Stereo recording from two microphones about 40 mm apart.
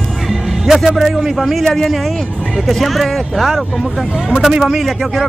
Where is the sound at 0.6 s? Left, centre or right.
Centre.